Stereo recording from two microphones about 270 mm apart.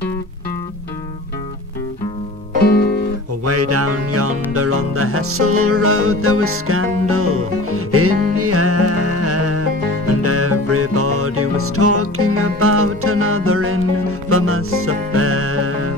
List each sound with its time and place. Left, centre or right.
3.4 s music: right